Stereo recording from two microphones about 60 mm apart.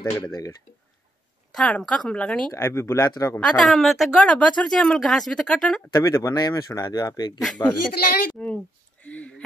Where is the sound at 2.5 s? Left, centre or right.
Left.